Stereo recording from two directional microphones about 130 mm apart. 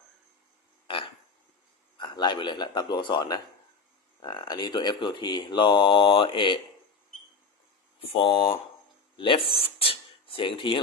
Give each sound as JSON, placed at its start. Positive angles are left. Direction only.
{"t": 2.0, "sound": "speech", "side_deg": 35}
{"t": 8.1, "sound": "speech", "side_deg": 45}
{"t": 9.1, "sound": "a sound", "side_deg": 40}